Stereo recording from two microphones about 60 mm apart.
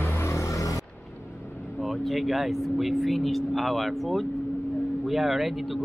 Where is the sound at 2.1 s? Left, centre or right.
Centre.